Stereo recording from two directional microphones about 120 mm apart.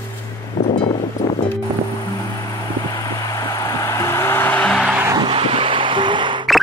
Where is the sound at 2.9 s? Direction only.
30° left (ahead or behind); by 4.9 s 10° left (ahead or behind).